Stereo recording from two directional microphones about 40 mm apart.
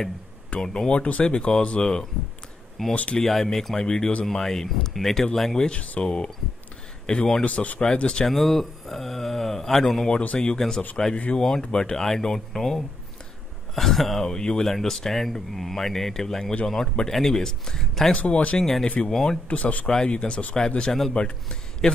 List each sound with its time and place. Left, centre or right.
0.6 s speech: left
2.9 s speech: left
3.2 s speech: centre
5.9 s speech: left
7.4 s speech: left
8.0 s speech: left
8.3 s speech: centre
10.3 s speech: left; by 14.2 s centre
14.2 s speech: centre
18.1 s speech: left
18.6 s speech: centre
19.4 s speech: left
20.1 s a man's voice: left